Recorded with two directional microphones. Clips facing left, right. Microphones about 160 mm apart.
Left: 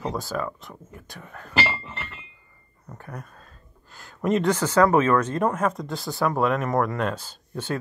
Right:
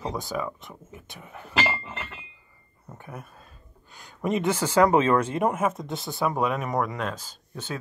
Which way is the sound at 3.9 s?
Centre (ahead or behind).